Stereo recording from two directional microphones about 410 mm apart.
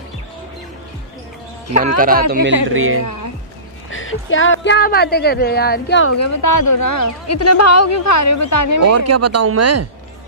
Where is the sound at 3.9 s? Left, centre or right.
Left.